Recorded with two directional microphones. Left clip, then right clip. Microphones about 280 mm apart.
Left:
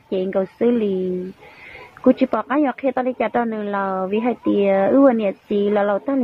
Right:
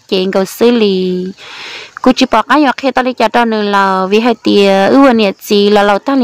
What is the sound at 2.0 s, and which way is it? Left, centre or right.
Speech, right.